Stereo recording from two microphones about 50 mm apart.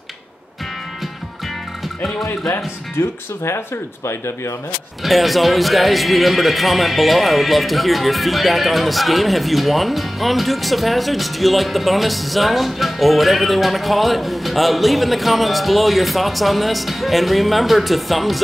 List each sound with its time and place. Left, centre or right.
2.5 s speech: left
5.0 s speech: centre